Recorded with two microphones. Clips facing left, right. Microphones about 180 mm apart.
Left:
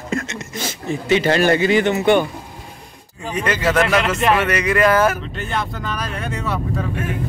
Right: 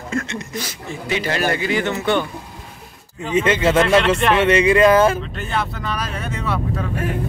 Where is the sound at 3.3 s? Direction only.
25° right (ahead or behind).